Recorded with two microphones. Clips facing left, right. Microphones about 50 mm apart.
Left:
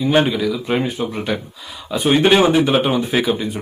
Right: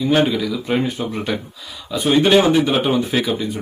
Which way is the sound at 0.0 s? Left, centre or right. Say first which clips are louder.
Left 1 dB; centre.